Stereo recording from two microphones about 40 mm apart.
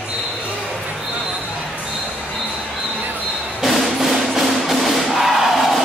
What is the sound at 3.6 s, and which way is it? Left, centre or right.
Music, centre.